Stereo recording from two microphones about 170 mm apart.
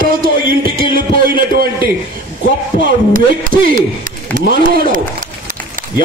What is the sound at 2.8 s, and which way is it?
A man's voice, 55° right (ahead or behind).